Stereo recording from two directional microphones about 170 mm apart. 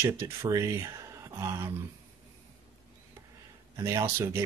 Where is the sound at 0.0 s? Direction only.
15° right (ahead or behind).